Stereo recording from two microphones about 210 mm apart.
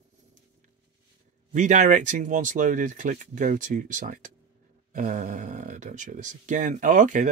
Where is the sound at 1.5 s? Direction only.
35° right (ahead or behind).